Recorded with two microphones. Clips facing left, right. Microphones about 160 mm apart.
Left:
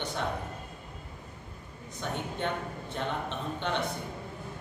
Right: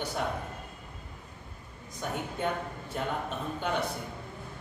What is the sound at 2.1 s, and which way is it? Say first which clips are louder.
A man's voice: right 1 dB; 5° right (ahead or behind).